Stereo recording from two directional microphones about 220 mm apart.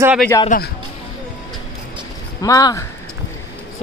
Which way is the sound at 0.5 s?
35° left (ahead or behind).